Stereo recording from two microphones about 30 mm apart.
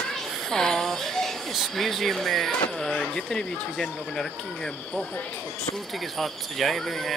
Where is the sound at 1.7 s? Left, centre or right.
Centre.